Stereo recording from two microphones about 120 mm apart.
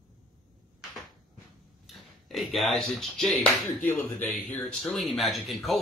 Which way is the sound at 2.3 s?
Centre (ahead or behind).